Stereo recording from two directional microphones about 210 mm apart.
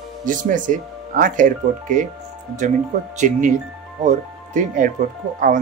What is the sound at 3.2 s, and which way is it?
Speech, 35° right (ahead or behind).